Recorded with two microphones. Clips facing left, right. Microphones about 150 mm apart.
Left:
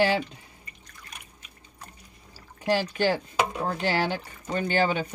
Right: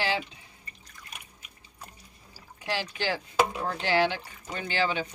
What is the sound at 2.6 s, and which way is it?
Speech, 45° left (ahead or behind).